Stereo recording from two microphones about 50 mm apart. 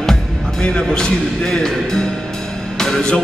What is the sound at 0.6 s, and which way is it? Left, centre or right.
Speech, centre.